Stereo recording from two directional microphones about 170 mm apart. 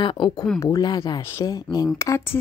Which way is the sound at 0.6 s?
20° left (ahead or behind).